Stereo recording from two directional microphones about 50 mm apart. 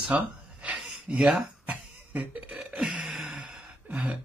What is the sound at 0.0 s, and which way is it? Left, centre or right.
Gasp, right.